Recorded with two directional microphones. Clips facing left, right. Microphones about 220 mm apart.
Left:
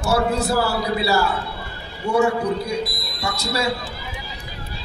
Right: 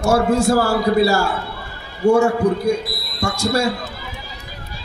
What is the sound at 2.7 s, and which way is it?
Speech, 45° right (ahead or behind).